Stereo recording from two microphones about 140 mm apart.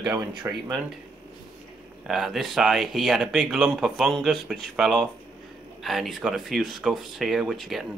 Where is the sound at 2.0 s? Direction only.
Centre (ahead or behind).